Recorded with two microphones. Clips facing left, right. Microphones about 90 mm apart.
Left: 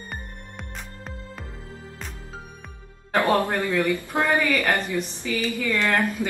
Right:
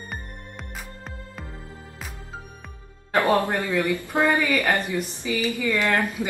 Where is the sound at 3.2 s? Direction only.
20° right (ahead or behind).